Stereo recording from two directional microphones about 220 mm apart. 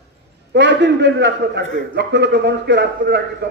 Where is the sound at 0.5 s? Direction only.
55° right (ahead or behind).